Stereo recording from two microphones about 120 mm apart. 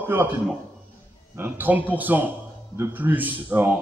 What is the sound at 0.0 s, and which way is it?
Speech, 20° right (ahead or behind).